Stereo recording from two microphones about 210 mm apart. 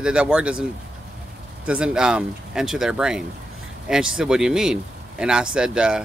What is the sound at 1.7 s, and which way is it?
Speech, 5° right (ahead or behind).